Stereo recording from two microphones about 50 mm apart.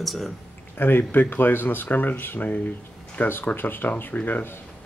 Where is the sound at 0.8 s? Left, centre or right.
Left.